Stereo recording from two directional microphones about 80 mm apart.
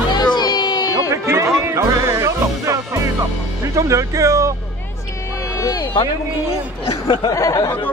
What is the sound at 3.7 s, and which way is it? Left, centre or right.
Speech, right.